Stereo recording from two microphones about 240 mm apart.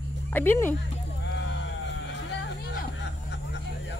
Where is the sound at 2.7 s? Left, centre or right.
Left.